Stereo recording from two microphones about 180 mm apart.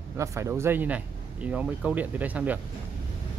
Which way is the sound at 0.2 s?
15° right (ahead or behind).